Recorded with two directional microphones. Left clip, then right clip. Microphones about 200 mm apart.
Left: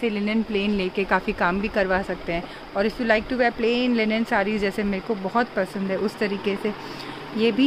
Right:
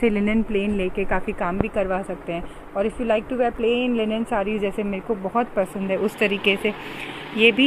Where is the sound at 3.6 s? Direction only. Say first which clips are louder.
Right 1 dB; 50° left (ahead or behind).